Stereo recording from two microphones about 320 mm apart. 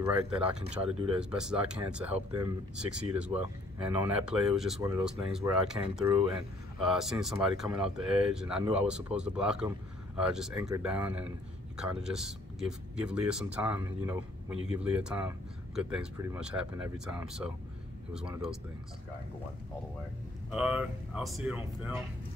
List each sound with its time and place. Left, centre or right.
0.0 s speech: centre
0.9 s speech: centre
1.3 s speech: centre
20.5 s speech: centre